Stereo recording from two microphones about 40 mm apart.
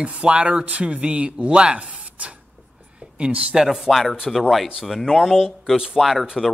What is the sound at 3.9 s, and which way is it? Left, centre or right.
Speech, centre.